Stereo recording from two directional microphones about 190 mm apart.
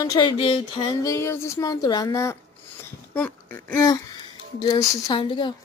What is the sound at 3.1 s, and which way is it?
Speech, 10° left (ahead or behind).